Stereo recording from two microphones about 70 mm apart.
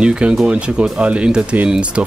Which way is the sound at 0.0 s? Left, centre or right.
Centre.